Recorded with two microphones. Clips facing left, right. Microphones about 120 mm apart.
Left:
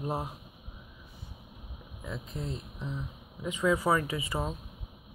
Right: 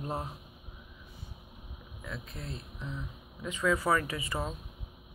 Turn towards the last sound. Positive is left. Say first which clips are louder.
# left 2 dB
turn(degrees=10)  # may be behind; listen again after turning